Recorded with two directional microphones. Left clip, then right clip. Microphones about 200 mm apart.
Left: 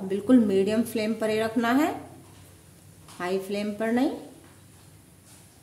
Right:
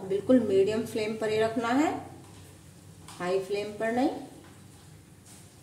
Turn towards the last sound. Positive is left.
turn(degrees=35)  # may be behind; listen again after turning